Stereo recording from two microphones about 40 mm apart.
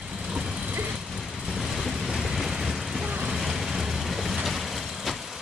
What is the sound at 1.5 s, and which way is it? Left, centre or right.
Vehicle, centre.